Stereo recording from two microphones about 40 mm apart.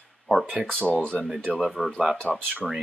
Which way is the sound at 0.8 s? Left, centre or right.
Left.